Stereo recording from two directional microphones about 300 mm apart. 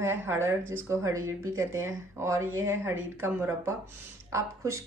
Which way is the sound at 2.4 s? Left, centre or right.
Right.